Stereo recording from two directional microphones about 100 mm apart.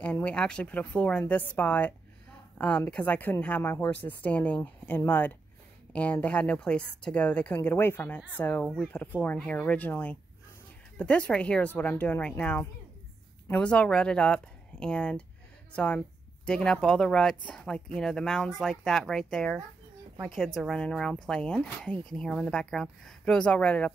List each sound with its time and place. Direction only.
0.0 s speech: 15° left (ahead or behind)